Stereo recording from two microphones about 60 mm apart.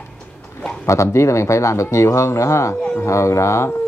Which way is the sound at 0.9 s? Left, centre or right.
Left.